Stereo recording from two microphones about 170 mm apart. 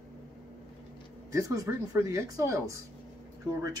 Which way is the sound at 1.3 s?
20° right (ahead or behind).